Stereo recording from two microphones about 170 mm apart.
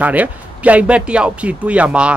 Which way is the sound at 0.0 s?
10° right (ahead or behind).